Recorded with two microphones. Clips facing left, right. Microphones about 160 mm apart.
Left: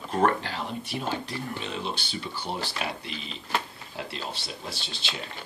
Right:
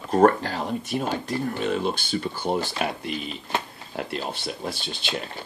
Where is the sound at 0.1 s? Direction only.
40° right (ahead or behind).